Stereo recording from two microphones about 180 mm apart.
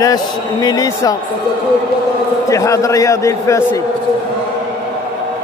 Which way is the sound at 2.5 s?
15° left (ahead or behind).